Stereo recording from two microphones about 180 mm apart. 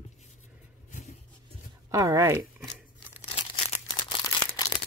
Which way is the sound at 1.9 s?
15° right (ahead or behind).